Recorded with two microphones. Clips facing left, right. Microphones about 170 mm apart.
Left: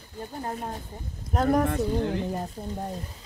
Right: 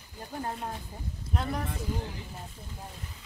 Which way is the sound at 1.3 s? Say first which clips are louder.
Left 11 dB; 50° left (ahead or behind).